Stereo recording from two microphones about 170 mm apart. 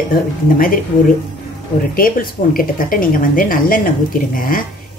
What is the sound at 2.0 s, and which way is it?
A woman's voice, 55° left (ahead or behind).